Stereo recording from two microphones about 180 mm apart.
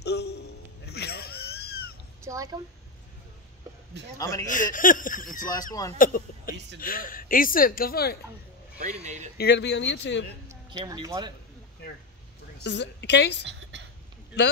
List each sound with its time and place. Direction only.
0.0 s music: 65° left (ahead or behind)
2.2 s a sound: 15° right (ahead or behind)
4.2 s speech: 20° left (ahead or behind)
4.5 s speech: 45° left (ahead or behind)
8.7 s speech: 40° right (ahead or behind)
9.4 s a woman's voice: 70° left (ahead or behind)
10.7 s speech: 20° right (ahead or behind)
12.6 s a woman's voice: 75° left (ahead or behind)
13.5 s a sound: 80° right